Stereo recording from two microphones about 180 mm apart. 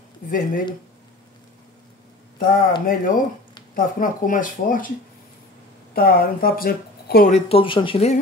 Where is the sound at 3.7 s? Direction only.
50° left (ahead or behind).